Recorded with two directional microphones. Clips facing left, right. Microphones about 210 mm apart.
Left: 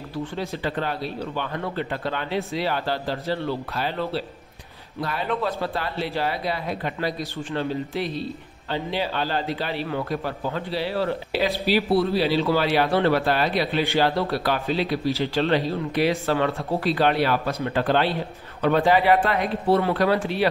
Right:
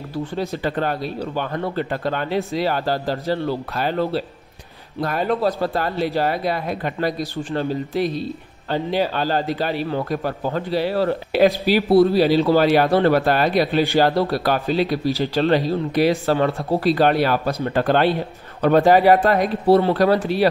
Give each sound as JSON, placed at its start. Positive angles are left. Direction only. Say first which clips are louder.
{"t": 0.4, "sound": "speech", "louder": "right 5 dB", "side_deg": -45}